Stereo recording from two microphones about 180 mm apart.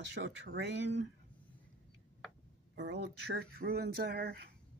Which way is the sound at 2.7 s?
70° right (ahead or behind).